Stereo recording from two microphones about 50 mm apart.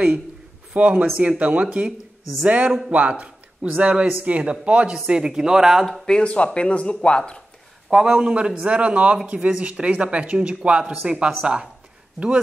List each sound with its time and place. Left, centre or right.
0.7 s speech: right; by 5.9 s centre
6.0 s speech: centre
7.9 s speech: centre